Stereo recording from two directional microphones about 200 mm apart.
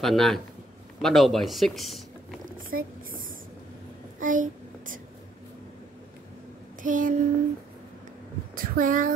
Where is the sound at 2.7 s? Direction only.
45° right (ahead or behind).